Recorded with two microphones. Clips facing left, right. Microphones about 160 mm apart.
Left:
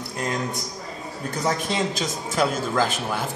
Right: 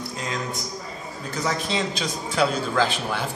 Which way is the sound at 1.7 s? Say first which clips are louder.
Left 1 dB; 45° left (ahead or behind).